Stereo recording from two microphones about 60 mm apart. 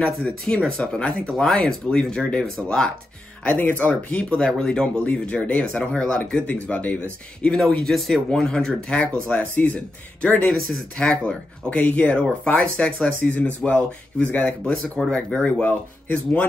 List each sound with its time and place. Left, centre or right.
0.0 s speech: centre
3.4 s speech: left
4.4 s speech: centre; by 7.0 s left
7.4 s speech: centre
10.2 s speech: left
10.5 s speech: centre
11.1 s speech: centre
14.6 s speech: centre
15.6 s speech: left